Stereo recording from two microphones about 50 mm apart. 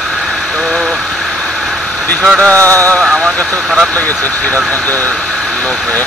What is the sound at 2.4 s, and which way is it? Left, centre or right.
Speech, left.